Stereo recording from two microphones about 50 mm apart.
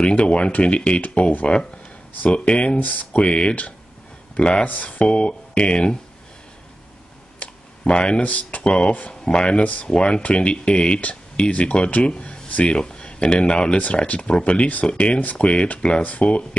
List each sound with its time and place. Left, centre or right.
0.0 s speech: left
2.8 s speech: left
7.3 s speech: left